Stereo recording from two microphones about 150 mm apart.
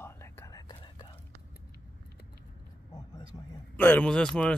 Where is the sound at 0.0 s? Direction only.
15° left (ahead or behind).